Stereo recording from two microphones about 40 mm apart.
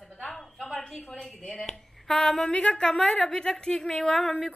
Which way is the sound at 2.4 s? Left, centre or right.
Centre.